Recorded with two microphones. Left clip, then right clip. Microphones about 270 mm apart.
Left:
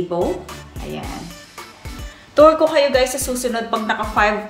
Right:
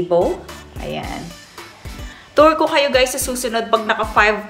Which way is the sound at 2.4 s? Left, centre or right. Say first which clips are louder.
Left 1 dB; centre.